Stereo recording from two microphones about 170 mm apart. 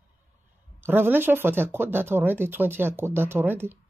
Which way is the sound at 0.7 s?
10° right (ahead or behind).